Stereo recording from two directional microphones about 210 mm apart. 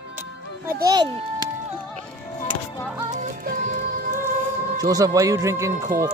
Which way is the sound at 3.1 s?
35° right (ahead or behind).